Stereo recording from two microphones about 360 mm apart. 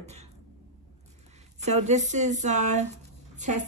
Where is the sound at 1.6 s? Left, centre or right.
Centre.